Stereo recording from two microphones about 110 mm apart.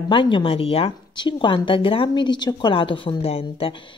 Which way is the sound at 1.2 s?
45° left (ahead or behind).